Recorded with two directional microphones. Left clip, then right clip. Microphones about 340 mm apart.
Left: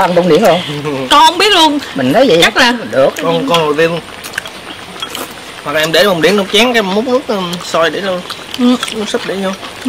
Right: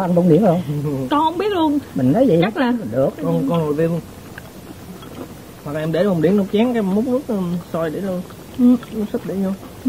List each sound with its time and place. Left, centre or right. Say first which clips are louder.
0.1 s speech: left 7 dB; left
0.6 s speech: left 8 dB; centre
3.0 s speech: left 9 dB; centre
3.5 s speech: left 10 dB; centre
5.7 s speech: left 10 dB; centre
6.9 s speech: left 8 dB; centre
7.7 s speech: left 11 dB; centre